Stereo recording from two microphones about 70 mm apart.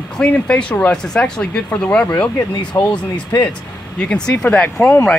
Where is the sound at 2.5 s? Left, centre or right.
Left.